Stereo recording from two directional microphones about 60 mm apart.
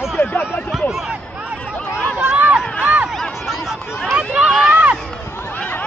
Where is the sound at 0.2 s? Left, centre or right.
Left.